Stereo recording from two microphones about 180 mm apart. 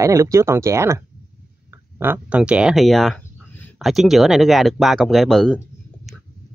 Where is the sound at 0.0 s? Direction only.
15° right (ahead or behind); by 5.6 s centre (ahead or behind).